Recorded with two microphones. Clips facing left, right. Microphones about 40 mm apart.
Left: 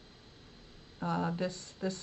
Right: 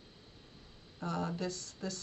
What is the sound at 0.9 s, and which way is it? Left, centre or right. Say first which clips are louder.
Speech: left 3 dB; left.